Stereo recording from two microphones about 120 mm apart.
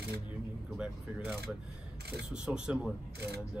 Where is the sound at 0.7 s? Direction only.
15° right (ahead or behind).